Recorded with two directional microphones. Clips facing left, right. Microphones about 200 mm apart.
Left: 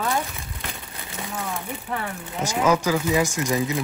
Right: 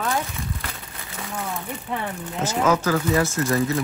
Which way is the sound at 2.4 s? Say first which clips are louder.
Even; 10° left (ahead or behind).